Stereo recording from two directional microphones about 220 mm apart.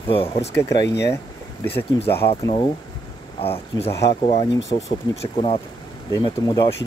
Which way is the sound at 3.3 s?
25° left (ahead or behind).